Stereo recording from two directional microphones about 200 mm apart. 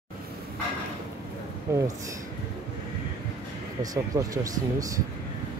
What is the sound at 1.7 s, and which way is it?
Speech, 15° right (ahead or behind).